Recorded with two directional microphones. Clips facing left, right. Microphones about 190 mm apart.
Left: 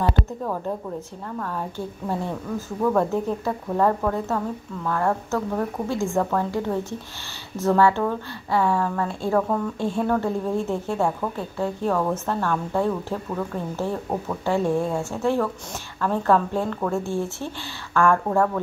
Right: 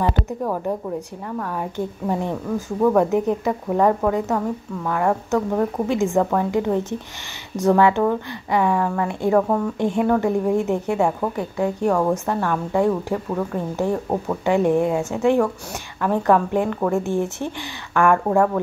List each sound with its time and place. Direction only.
0.5 s speech: 15° right (ahead or behind)